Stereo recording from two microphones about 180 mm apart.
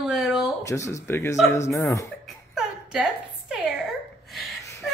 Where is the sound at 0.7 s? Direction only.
15° left (ahead or behind).